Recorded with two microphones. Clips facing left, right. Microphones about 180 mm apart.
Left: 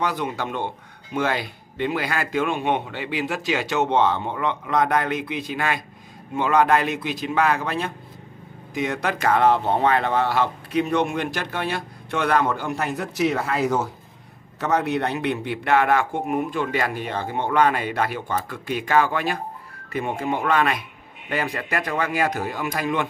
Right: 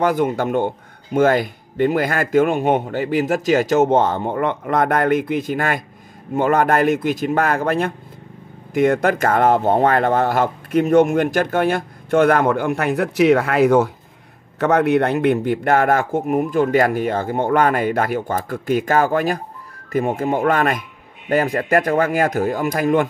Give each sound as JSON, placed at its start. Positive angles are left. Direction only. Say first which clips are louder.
{"t": 0.0, "sound": "speech", "louder": "right 8 dB", "side_deg": -50}